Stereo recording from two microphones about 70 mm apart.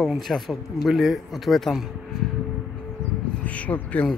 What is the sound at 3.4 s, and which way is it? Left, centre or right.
Speech, centre.